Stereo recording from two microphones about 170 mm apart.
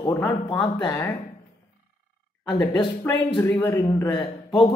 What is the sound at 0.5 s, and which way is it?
Speech, 25° left (ahead or behind).